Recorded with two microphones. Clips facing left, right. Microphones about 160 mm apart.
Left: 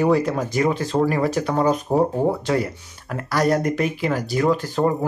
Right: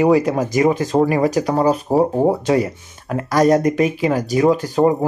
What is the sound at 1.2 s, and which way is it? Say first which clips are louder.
Speech: right 4 dB; 40° right (ahead or behind).